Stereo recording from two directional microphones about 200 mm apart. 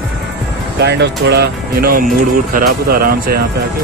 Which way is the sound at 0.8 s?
60° right (ahead or behind).